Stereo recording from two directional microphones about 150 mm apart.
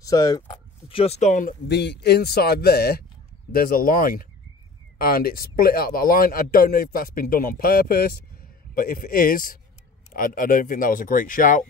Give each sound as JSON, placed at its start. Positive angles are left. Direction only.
{"t": 0.0, "sound": "speech", "side_deg": 25}
{"t": 0.5, "sound": "speech", "side_deg": 40}
{"t": 3.5, "sound": "a man's voice", "side_deg": 75}